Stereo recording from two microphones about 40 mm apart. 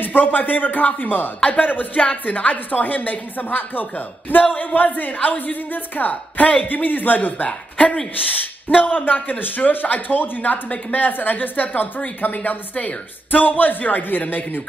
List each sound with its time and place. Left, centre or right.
0.0 s speech: left
7.4 s a woman's voice: left
8.3 s speech: left